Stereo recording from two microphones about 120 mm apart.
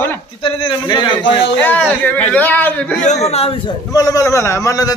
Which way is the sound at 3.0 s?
60° left (ahead or behind).